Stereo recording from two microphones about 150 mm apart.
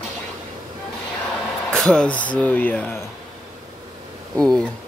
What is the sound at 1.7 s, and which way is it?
Speech, 5° left (ahead or behind).